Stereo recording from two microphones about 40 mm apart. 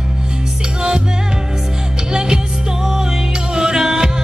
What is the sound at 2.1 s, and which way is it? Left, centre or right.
Music, centre.